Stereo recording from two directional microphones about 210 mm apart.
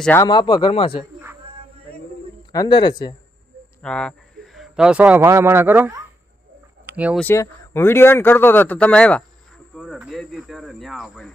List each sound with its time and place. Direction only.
0.0 s speech: 10° left (ahead or behind)
0.3 s speech: 20° left (ahead or behind)
2.5 s speech: 20° left (ahead or behind)
3.8 s speech: 5° left (ahead or behind)
6.9 s a sound: 5° right (ahead or behind)
7.2 s speech: 10° left (ahead or behind)